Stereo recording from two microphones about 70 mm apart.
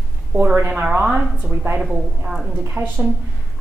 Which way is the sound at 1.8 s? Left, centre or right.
Centre.